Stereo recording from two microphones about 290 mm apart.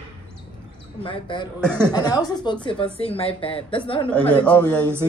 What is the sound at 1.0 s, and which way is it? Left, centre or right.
Speech, centre.